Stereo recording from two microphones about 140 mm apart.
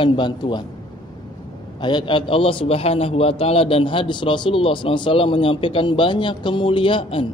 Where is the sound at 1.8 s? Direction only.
35° left (ahead or behind).